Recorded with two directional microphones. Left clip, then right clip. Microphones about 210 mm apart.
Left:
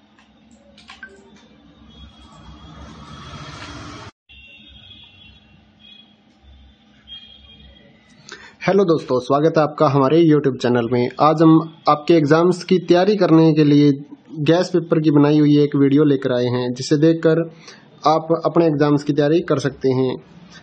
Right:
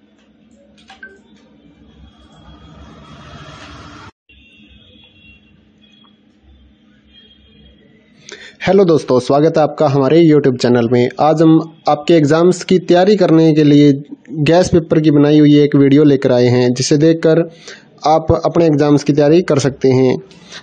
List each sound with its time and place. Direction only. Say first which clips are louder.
8.3 s a man's voice: right 5 dB; 10° right (ahead or behind); by 20.6 s 30° right (ahead or behind)